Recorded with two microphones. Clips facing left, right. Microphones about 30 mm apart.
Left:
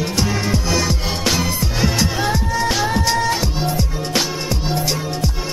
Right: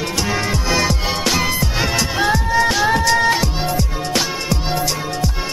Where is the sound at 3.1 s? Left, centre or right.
Right.